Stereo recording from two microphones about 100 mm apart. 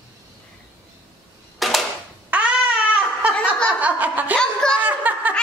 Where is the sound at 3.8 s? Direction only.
15° right (ahead or behind).